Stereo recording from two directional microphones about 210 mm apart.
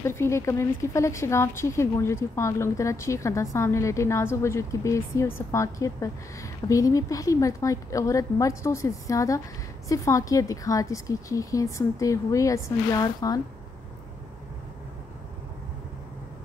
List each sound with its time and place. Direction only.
0.0 s speech: 10° left (ahead or behind)